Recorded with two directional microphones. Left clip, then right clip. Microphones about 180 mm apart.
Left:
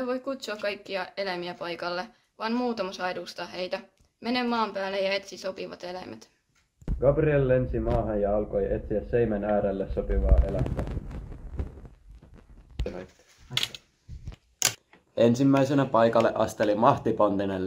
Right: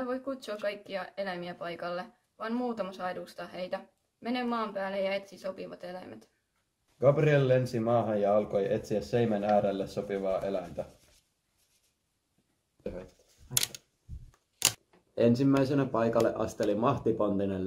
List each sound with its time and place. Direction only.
0.0 s speech: 20° left (ahead or behind)
13.6 s a sound: 25° right (ahead or behind)
15.1 s speech: 40° left (ahead or behind)